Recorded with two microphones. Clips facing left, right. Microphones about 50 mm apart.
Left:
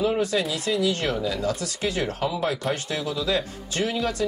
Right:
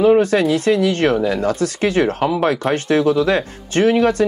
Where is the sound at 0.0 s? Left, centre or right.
Right.